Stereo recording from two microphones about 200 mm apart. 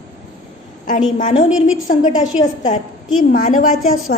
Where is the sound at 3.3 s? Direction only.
40° left (ahead or behind).